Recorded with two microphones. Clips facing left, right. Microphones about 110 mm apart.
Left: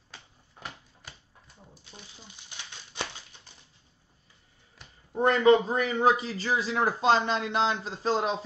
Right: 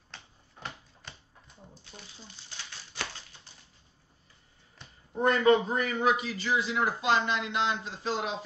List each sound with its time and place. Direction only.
0.1 s typewriter: 5° left (ahead or behind)
1.9 s crumpling: 15° left (ahead or behind)
5.2 s a man's voice: 25° left (ahead or behind)